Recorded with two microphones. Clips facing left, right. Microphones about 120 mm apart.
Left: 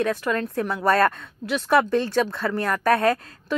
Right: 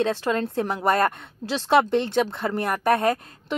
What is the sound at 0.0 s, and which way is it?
Speech, 25° right (ahead or behind).